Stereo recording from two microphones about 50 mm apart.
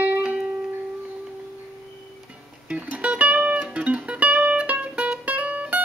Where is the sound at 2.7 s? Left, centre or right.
Right.